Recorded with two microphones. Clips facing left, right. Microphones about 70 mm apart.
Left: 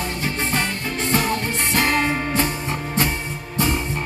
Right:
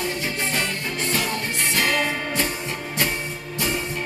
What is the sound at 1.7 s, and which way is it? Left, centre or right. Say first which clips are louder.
Music: left 3 dB; left.